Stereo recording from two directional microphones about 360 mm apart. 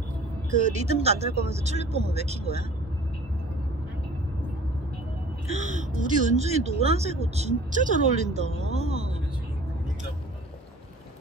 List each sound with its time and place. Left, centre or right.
0.8 s speech: centre
5.5 s speech: centre